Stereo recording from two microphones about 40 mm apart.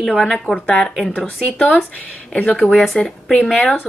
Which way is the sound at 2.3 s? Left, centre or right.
Left.